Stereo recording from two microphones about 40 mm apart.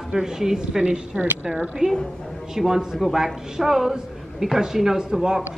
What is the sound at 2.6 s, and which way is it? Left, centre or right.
A woman's voice, centre.